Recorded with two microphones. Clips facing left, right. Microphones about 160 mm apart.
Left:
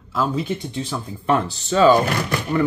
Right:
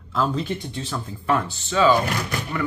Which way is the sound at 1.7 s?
40° left (ahead or behind).